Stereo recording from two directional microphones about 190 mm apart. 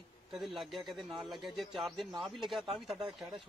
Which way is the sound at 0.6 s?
Centre (ahead or behind).